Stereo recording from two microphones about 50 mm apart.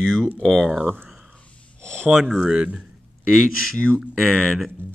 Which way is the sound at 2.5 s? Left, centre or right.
Right.